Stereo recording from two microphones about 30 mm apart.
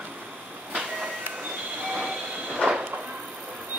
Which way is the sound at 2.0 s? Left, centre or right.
Right.